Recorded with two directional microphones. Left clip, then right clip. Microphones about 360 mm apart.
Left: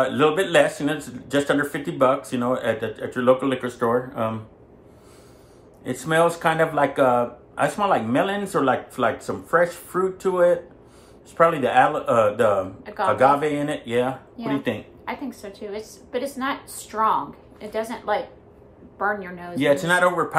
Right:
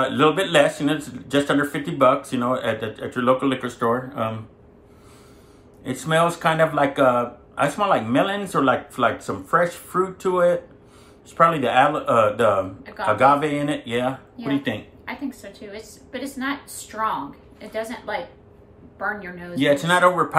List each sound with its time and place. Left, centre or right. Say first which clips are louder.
0.0 s speech: right 1 dB; centre
5.9 s speech: even; centre
12.8 s a woman's voice: left 2 dB; centre
13.1 s speech: right 1 dB; centre
15.0 s a woman's voice: left 1 dB; centre
19.6 s speech: right 2 dB; centre